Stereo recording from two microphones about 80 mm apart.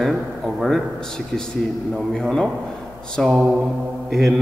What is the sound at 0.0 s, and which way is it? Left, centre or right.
A man's voice, centre.